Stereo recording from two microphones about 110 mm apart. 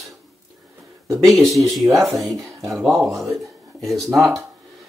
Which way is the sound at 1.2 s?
Centre (ahead or behind).